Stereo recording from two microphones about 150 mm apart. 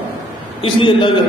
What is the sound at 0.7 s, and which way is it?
Speech, 35° left (ahead or behind).